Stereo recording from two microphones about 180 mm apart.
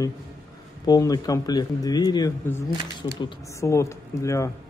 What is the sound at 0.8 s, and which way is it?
A man's voice, 20° left (ahead or behind).